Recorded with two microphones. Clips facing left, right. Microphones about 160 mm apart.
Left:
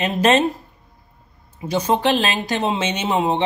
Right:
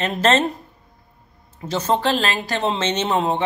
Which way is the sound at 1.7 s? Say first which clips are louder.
Left 2 dB; 15° left (ahead or behind).